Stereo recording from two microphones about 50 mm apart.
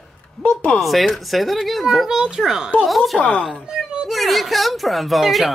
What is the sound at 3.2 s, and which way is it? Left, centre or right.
Speech, left.